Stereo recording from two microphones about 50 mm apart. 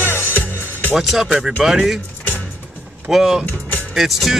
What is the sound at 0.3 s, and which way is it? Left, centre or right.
Music, left.